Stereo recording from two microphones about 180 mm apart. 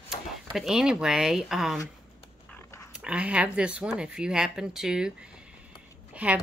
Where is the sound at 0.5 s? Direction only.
5° right (ahead or behind).